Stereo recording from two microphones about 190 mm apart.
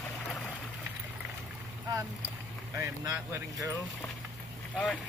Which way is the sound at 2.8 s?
15° right (ahead or behind).